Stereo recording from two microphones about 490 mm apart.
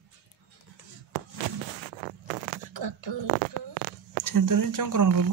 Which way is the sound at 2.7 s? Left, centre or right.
Right.